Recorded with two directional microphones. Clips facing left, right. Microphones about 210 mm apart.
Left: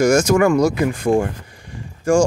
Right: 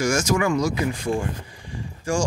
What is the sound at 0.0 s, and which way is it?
Speech, 60° left (ahead or behind).